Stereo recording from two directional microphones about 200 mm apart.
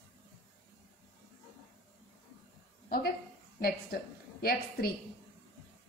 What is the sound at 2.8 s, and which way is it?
A woman's voice, 50° left (ahead or behind).